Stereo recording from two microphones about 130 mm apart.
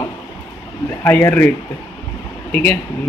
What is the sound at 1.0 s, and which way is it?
Speech, 15° left (ahead or behind).